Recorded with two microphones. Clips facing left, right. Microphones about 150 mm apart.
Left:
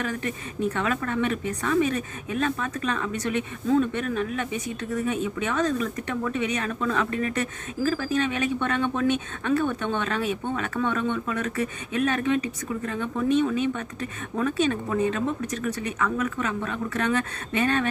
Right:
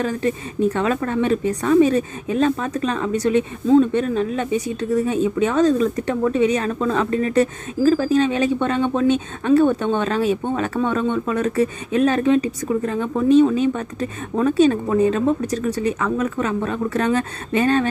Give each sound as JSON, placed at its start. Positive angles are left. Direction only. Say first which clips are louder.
{"t": 0.0, "sound": "speech", "louder": "right 8 dB", "side_deg": -35}